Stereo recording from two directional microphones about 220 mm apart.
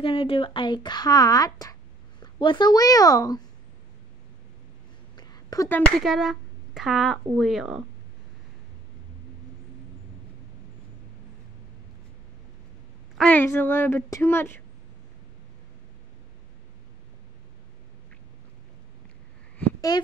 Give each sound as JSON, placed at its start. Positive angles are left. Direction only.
{"t": 0.0, "sound": "speech", "side_deg": 25}
{"t": 5.1, "sound": "speech", "side_deg": 15}
{"t": 13.2, "sound": "speech", "side_deg": 10}
{"t": 19.9, "sound": "a woman's voice", "side_deg": 20}